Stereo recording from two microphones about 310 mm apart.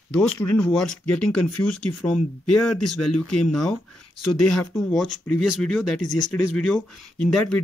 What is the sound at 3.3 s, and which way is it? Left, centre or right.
Speech, centre.